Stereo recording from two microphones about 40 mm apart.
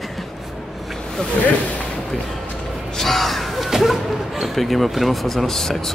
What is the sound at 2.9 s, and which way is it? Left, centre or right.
Music, centre.